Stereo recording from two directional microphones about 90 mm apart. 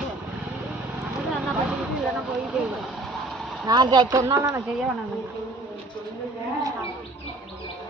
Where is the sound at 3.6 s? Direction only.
55° right (ahead or behind).